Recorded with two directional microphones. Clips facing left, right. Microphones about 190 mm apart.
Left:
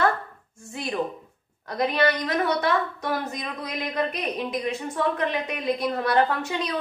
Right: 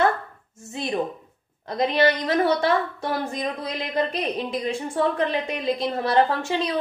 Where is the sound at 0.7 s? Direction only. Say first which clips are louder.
Right 3 dB; 25° right (ahead or behind).